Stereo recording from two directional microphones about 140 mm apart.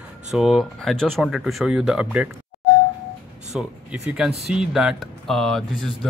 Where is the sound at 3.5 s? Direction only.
5° right (ahead or behind).